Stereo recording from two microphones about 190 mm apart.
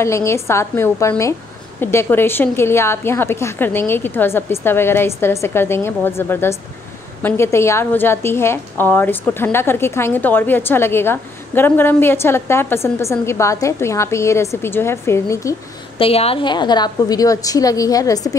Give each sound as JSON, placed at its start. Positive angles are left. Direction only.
{"t": 0.0, "sound": "a woman's voice", "side_deg": 15}
{"t": 16.0, "sound": "a woman's voice", "side_deg": 30}